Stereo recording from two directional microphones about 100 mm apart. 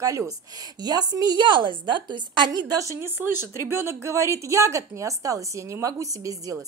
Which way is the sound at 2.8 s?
30° right (ahead or behind).